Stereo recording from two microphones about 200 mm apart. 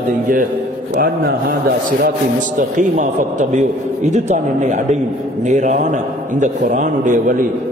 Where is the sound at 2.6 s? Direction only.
40° right (ahead or behind).